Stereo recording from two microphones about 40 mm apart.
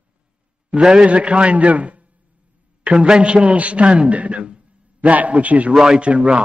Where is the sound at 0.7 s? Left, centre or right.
Centre; by 2.1 s right.